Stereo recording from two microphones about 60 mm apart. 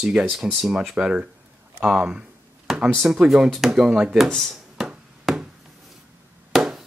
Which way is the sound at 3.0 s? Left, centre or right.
Centre.